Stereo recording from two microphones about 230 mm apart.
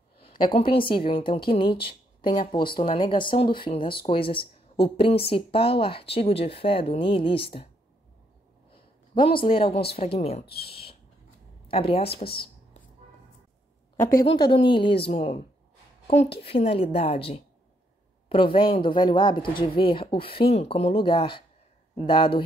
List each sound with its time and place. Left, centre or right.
0.2 s a woman's voice: left
9.1 s a woman's voice: left
10.4 s speech: left
11.7 s a woman's voice: left
14.2 s a woman's voice: left